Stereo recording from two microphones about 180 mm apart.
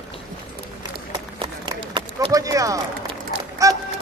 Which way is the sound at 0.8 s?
25° right (ahead or behind).